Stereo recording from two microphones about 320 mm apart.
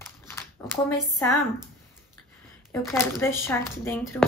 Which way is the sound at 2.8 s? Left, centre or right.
Centre.